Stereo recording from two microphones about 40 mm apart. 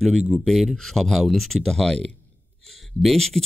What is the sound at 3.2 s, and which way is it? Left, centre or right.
Speech, centre.